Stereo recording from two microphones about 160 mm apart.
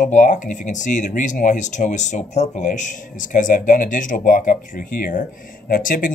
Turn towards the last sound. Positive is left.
turn(degrees=60)  # may be behind; listen again after turning